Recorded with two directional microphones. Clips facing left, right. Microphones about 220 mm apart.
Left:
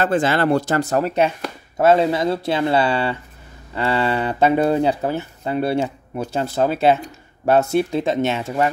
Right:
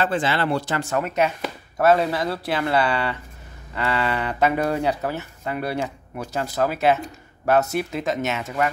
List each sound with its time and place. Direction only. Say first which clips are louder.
0.0 s speech: left 4 dB; 45° left (ahead or behind); by 8.6 s 30° left (ahead or behind)